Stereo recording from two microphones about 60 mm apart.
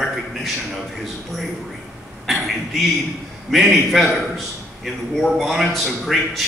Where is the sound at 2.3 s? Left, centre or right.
Centre.